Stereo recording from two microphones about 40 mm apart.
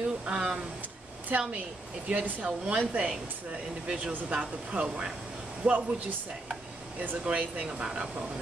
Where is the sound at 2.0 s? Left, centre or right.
Right.